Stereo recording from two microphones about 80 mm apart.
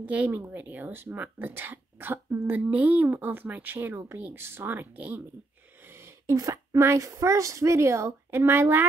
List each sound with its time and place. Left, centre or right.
0.0 s speech: centre
6.2 s speech: right
6.7 s speech: right